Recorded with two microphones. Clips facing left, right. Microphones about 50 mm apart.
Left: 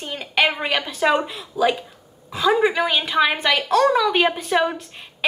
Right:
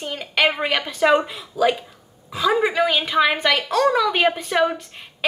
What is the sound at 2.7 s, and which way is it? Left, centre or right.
Speech, centre.